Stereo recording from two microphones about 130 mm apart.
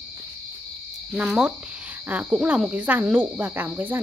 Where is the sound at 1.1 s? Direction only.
10° right (ahead or behind).